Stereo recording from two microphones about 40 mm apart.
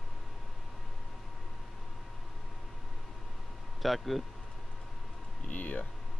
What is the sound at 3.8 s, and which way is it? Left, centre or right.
Speech, centre.